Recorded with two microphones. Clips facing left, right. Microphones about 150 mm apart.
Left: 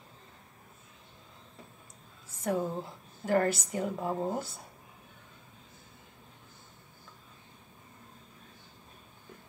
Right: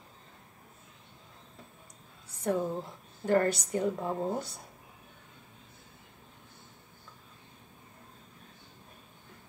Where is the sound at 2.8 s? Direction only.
5° left (ahead or behind).